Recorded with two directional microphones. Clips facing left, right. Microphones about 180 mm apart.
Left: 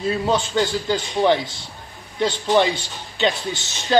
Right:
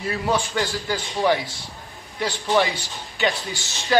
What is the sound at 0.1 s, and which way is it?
Speech, 20° left (ahead or behind).